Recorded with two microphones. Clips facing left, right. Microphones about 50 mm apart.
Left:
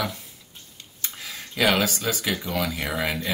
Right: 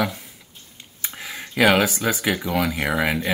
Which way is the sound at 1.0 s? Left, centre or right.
Right.